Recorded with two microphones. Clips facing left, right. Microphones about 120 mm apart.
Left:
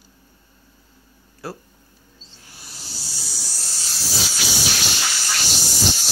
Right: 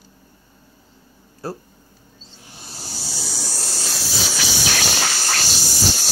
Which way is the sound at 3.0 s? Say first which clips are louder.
Right 9 dB; 90° right.